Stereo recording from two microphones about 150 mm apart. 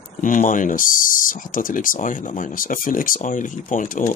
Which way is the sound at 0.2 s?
60° left (ahead or behind).